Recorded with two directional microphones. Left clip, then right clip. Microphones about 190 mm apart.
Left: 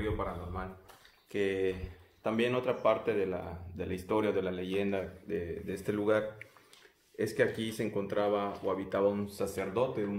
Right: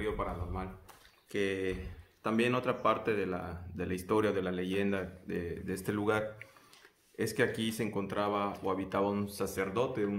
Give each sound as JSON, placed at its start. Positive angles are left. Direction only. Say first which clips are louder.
{"t": 1.3, "sound": "speech", "louder": "left 2 dB", "side_deg": -20}
{"t": 2.2, "sound": "a man's voice", "louder": "even", "side_deg": -30}